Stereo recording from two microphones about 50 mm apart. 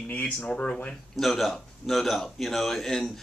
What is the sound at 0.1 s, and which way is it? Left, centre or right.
Speech, left.